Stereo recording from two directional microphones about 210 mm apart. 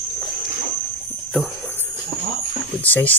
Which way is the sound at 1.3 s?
10° left (ahead or behind).